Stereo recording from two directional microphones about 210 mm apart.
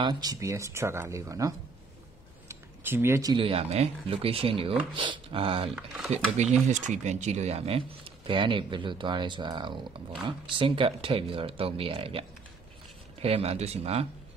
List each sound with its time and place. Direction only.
0.0 s speech: 20° right (ahead or behind)